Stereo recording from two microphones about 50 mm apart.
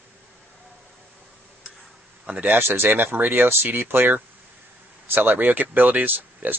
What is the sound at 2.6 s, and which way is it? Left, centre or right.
Speech, right.